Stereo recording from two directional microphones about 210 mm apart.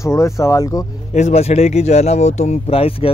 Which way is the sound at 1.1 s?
30° left (ahead or behind).